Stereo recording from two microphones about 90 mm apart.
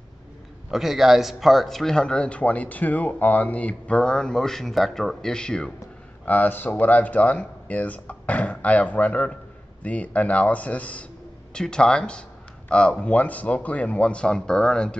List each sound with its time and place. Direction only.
0.7 s a man's voice: 5° right (ahead or behind)
6.2 s a man's voice: 20° left (ahead or behind)